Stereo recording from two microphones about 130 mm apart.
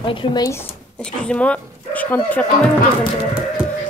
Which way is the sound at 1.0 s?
5° left (ahead or behind).